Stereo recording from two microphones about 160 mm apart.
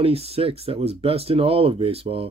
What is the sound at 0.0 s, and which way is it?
Speech, 40° right (ahead or behind).